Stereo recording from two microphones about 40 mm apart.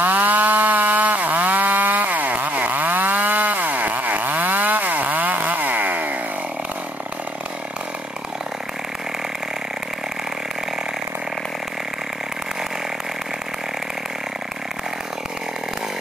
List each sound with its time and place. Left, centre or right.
0.0 s chainsaw: right